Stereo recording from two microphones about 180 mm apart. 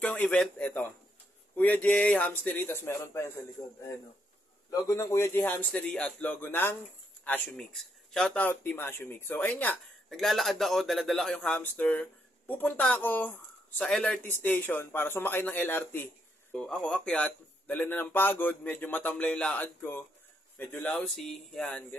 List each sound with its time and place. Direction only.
0.0 s speech: 5° left (ahead or behind)
4.6 s speech: 15° left (ahead or behind); by 21.8 s centre (ahead or behind)